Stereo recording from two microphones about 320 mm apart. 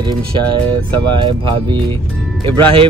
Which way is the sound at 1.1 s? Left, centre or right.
Centre.